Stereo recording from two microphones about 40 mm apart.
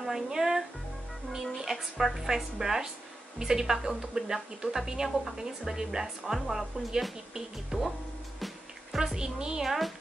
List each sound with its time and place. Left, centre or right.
0.0 s a woman's voice: centre
8.9 s a woman's voice: centre